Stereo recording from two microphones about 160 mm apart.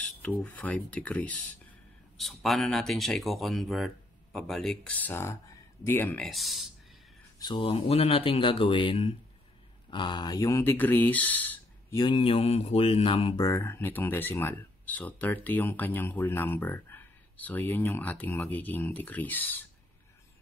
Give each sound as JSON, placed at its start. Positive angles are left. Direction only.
{"t": 0.0, "sound": "speech", "side_deg": 10}
{"t": 7.3, "sound": "speech", "side_deg": 30}
{"t": 12.0, "sound": "speech", "side_deg": 30}
{"t": 13.4, "sound": "speech", "side_deg": 20}